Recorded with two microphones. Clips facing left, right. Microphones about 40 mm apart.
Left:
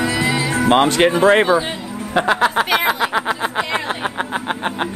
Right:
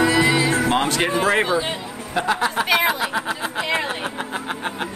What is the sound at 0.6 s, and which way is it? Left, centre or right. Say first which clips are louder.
Speech: left 6 dB; left.